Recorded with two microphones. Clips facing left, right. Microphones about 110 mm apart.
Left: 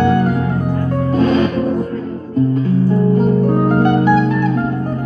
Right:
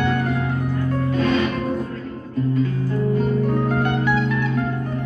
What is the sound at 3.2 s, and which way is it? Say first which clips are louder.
Music: left 7 dB; 40° left (ahead or behind).